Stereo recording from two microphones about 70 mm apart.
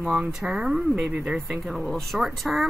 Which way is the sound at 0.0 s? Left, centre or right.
Centre.